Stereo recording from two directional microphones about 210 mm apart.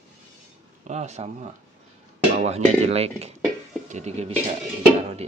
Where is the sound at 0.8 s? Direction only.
30° right (ahead or behind).